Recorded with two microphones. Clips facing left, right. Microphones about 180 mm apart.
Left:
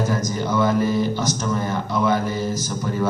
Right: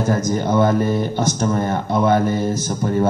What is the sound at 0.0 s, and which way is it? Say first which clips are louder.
Speech: right 4 dB; 55° right (ahead or behind).